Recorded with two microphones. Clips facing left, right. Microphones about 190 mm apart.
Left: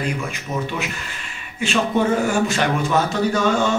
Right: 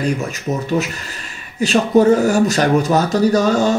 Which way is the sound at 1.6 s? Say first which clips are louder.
Right 7 dB; 40° right (ahead or behind).